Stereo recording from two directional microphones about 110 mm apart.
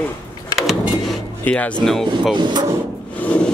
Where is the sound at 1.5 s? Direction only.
10° left (ahead or behind).